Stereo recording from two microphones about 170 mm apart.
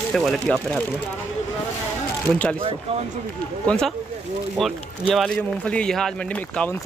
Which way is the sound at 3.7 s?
5° left (ahead or behind).